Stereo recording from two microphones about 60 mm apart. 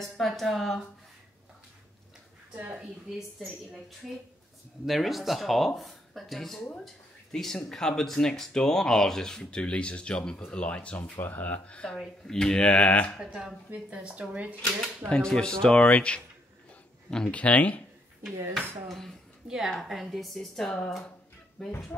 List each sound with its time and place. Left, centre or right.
0.0 s speech: centre
2.5 s speech: right
4.8 s speech: centre; by 11.1 s left
11.1 s speech: left
11.6 s speech: centre
13.2 s speech: centre
15.0 s speech: centre
17.4 s speech: left
18.9 s speech: centre
19.4 s a woman's voice: centre